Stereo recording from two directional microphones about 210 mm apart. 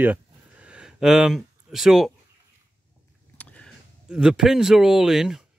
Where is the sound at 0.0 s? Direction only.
5° right (ahead or behind).